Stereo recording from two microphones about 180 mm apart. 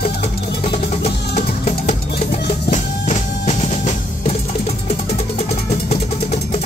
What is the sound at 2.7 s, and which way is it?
Music, 40° left (ahead or behind).